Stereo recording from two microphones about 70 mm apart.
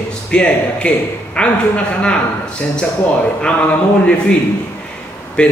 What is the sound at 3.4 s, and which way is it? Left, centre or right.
Speech, centre.